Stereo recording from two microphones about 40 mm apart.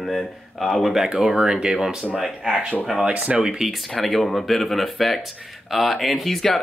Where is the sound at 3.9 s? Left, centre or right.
Centre.